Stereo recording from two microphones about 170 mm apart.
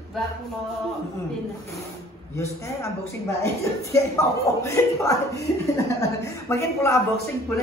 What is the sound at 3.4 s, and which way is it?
Speech, 20° left (ahead or behind).